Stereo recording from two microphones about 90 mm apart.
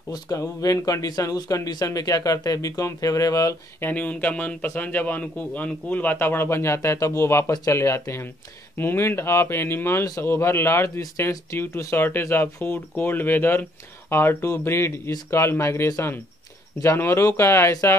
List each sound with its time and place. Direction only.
0.1 s speech: 40° left (ahead or behind)
3.8 s speech: 20° left (ahead or behind)